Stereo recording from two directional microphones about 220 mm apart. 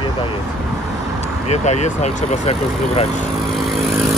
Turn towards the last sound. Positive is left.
turn(degrees=0)  # may be behind; listen again after turning